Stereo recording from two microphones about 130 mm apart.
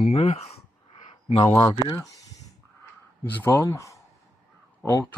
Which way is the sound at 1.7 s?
30° left (ahead or behind).